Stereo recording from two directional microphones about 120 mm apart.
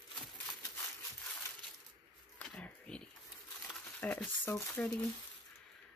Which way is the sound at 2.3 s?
10° left (ahead or behind).